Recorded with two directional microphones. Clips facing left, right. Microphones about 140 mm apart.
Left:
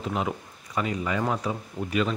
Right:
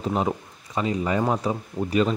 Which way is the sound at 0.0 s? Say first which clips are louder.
Right 4 dB; 35° right (ahead or behind).